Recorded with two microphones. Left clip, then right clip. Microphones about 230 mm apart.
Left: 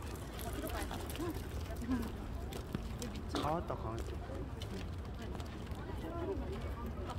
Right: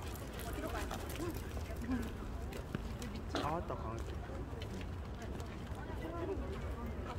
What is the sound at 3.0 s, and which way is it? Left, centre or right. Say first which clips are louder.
Pigeon: left 1 dB; left.